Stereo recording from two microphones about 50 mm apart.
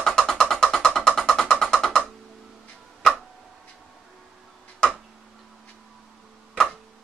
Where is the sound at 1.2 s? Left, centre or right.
Centre.